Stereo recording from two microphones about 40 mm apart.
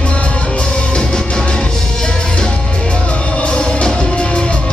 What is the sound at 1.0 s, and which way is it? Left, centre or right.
Music, centre.